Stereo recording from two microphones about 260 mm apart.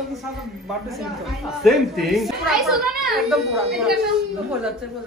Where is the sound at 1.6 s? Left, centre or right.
Centre.